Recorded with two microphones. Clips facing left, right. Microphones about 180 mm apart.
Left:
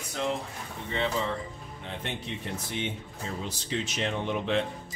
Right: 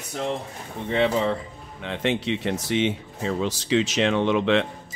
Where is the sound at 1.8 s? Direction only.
90° right.